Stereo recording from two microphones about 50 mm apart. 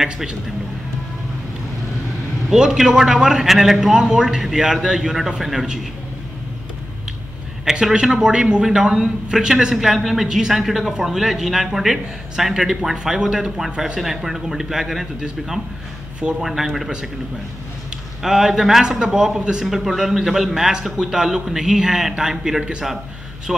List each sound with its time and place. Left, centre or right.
2.5 s a man's voice: centre
7.8 s a man's voice: centre
13.9 s a man's voice: centre
16.2 s a man's voice: centre
16.4 s speech: centre
18.2 s a man's voice: centre